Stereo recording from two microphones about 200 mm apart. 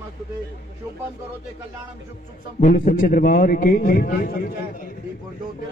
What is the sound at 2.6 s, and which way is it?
A man's voice, 40° left (ahead or behind).